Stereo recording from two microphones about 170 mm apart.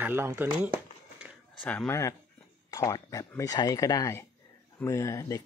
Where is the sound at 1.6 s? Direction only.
10° left (ahead or behind).